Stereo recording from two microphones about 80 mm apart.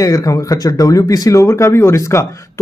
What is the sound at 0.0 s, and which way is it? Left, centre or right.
Speech, left.